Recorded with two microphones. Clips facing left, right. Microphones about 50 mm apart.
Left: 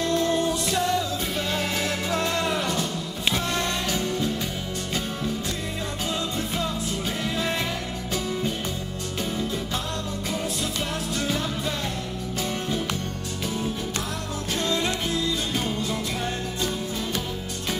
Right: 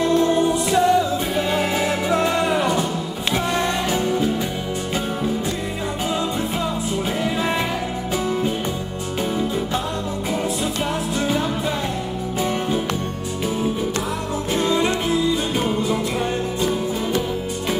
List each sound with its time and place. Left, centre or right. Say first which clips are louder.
0.0 s music: right 6 dB; centre
11.1 s music: right 5 dB; centre
14.5 s music: right 6 dB; centre